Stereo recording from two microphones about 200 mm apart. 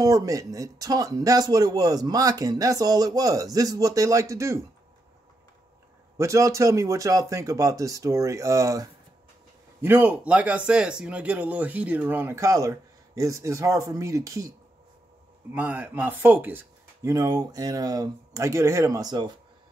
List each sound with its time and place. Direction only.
0.0 s speech: 15° right (ahead or behind)
6.1 s speech: 15° right (ahead or behind)
15.5 s speech: 10° right (ahead or behind)